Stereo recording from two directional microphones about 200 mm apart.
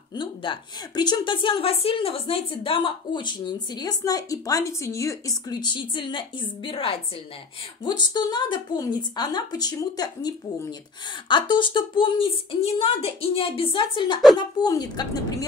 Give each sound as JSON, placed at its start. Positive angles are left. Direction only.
{"t": 0.1, "sound": "a woman's voice", "side_deg": 25}
{"t": 8.1, "sound": "a woman's voice", "side_deg": 20}